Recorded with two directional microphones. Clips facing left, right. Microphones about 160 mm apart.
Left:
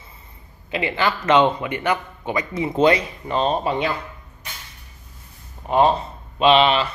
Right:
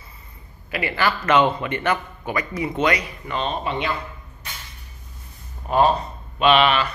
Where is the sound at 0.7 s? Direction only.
20° left (ahead or behind); by 3.9 s 40° left (ahead or behind).